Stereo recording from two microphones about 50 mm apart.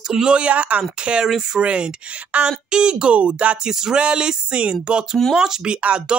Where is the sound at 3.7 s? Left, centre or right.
Centre.